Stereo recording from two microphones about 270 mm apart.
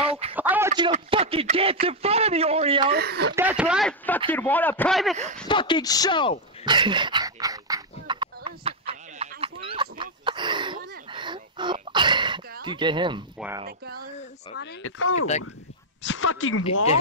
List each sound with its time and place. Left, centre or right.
0.0 s a sound: right
0.4 s speech: centre
2.9 s speech: right
3.3 s a man's voice: centre
5.5 s a man's voice: centre
6.6 s dog: centre
11.1 s throat clearing: centre
12.6 s speech: centre
13.7 s speech: right
14.5 s speech: left